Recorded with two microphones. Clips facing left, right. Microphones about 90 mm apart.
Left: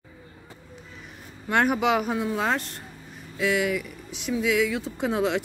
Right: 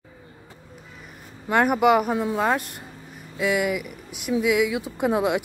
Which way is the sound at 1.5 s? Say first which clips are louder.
Right 4 dB; 5° right (ahead or behind).